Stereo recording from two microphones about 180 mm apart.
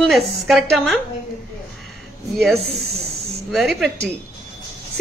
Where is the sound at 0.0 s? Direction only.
Centre (ahead or behind).